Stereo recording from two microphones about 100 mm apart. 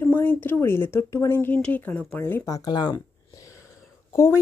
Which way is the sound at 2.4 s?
40° left (ahead or behind).